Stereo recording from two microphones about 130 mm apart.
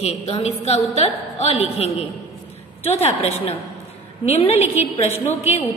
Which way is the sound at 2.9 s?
55° left (ahead or behind).